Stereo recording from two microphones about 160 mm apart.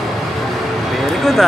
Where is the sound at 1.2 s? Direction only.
Centre (ahead or behind).